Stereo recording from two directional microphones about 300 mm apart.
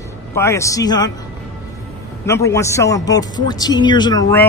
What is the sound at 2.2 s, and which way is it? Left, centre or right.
A man's voice, centre.